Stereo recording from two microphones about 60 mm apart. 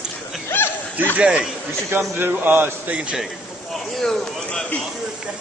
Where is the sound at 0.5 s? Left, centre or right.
Left.